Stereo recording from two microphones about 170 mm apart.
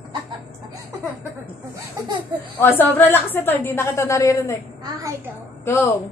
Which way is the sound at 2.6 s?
10° left (ahead or behind).